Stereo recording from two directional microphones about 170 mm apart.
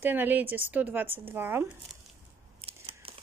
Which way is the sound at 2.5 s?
35° right (ahead or behind).